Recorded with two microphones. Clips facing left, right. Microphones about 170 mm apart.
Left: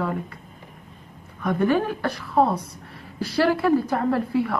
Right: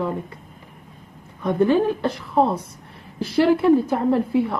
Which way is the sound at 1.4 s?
20° right (ahead or behind).